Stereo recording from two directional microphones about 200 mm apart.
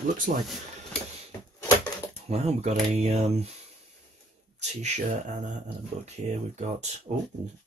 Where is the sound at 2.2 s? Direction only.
30° right (ahead or behind).